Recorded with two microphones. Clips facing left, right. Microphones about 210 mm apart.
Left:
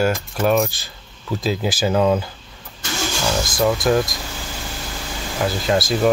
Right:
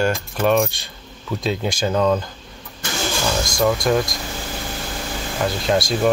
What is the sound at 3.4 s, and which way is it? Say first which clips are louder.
Speech: left 1 dB; 5° left (ahead or behind).